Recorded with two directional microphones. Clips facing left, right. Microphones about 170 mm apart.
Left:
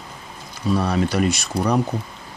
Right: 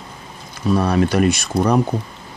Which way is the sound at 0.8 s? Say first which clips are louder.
Right 4 dB; 55° right (ahead or behind).